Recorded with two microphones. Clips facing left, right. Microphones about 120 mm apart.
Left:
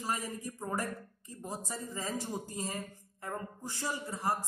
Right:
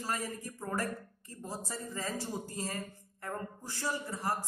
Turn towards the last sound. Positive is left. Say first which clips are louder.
# left 1 dB
turn(degrees=15)  # may be behind; listen again after turning